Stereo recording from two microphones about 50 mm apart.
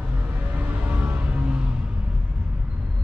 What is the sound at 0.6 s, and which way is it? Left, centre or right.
Music, right.